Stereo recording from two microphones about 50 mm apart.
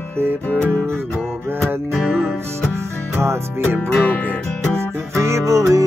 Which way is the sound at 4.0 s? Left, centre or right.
Left.